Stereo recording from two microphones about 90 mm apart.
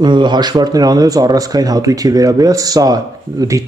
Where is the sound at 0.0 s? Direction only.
55° right (ahead or behind).